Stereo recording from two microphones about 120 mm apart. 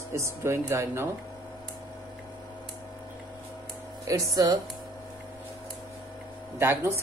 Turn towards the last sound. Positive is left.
turn(degrees=-20)  # may be behind; listen again after turning